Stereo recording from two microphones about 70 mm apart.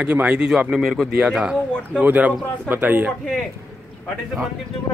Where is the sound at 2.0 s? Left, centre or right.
Right.